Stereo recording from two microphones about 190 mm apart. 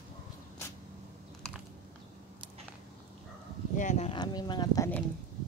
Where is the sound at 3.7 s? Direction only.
40° left (ahead or behind).